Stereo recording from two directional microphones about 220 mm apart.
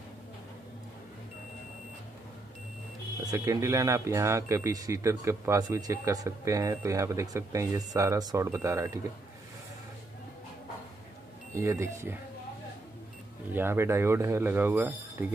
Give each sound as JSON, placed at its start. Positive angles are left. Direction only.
{"t": 3.3, "sound": "speech", "side_deg": -15}
{"t": 11.5, "sound": "speech", "side_deg": -15}
{"t": 13.5, "sound": "speech", "side_deg": -10}